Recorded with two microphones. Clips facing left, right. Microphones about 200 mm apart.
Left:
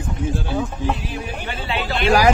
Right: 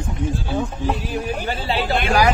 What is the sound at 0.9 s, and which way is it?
Speech, 40° right (ahead or behind).